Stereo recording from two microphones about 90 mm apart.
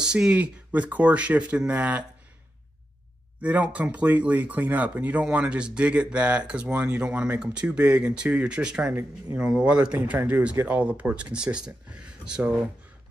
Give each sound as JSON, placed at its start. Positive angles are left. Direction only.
{"t": 0.0, "sound": "speech", "side_deg": -10}
{"t": 3.4, "sound": "speech", "side_deg": -15}